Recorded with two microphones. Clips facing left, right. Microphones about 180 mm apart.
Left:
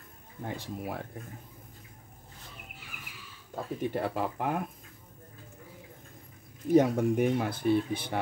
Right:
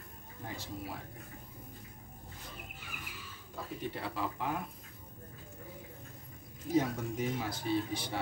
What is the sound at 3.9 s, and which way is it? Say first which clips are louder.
Speech: left 7 dB; 50° left (ahead or behind).